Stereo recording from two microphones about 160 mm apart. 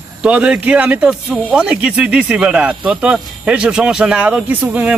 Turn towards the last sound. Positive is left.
turn(degrees=-10)  # may be behind; listen again after turning